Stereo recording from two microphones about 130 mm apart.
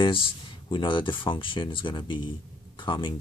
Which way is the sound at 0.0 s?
40° left (ahead or behind).